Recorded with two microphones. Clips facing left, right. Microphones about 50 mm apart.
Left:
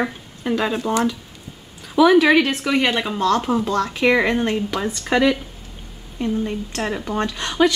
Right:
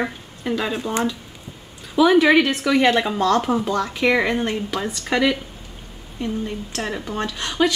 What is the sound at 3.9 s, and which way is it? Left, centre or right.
Speech, centre.